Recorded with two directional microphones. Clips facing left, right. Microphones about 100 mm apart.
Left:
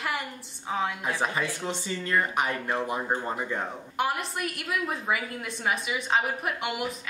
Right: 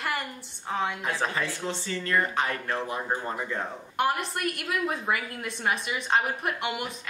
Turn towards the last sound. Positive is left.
turn(degrees=0)  # may be behind; listen again after turning